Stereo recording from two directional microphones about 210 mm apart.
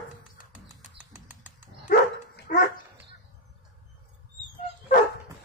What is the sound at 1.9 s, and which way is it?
Dog, 40° left (ahead or behind).